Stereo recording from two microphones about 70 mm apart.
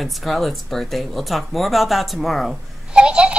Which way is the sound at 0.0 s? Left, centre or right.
Centre.